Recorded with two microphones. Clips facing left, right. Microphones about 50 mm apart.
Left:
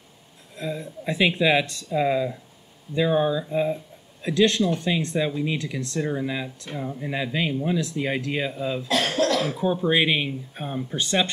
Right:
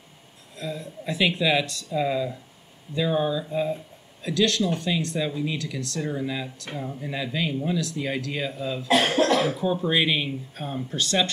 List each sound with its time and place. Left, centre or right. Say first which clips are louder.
0.6 s speech: left 2 dB; left
5.9 s speech: left 2 dB; centre
8.8 s cough: right 3 dB; right
9.6 s speech: left 2 dB; centre